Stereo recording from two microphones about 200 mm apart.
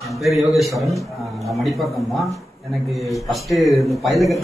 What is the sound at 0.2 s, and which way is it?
Speech, centre (ahead or behind).